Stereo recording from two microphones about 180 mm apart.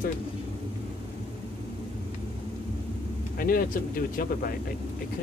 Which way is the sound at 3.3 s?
55° left (ahead or behind).